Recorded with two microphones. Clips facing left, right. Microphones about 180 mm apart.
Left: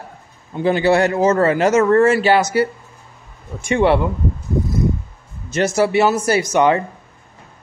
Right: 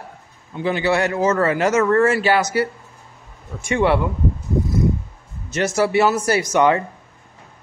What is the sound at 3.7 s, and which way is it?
Speech, 25° left (ahead or behind).